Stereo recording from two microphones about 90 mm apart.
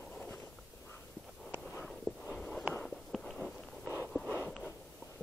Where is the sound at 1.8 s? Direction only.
Centre (ahead or behind).